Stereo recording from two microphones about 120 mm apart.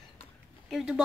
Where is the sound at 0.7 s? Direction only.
Centre (ahead or behind).